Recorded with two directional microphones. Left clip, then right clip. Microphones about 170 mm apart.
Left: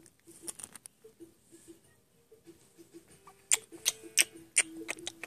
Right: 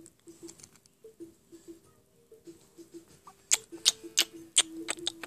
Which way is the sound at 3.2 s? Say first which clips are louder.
Right 2 dB; 15° right (ahead or behind).